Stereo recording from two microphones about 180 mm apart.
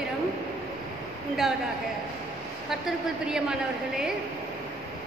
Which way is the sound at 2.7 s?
5° right (ahead or behind).